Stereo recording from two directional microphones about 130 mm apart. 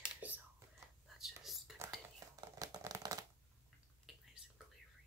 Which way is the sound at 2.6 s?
25° right (ahead or behind).